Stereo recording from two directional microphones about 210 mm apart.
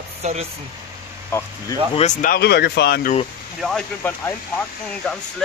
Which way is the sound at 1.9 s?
35° left (ahead or behind).